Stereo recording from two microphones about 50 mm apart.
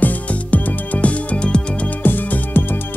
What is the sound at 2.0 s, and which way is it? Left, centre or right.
Music, left.